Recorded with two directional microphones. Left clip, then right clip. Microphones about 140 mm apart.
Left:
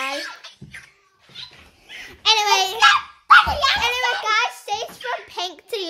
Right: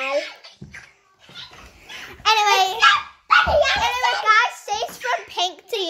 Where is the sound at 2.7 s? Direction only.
75° left (ahead or behind); by 3.8 s 90° left.